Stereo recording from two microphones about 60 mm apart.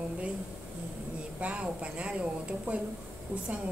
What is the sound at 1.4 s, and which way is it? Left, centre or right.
A woman's voice, right.